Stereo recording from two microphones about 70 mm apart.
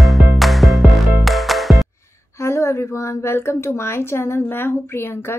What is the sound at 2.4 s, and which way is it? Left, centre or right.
A woman's voice, left.